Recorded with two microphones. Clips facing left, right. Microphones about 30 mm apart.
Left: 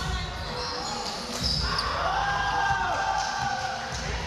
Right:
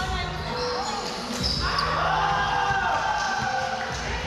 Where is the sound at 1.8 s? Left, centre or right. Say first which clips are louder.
Right 4 dB; right.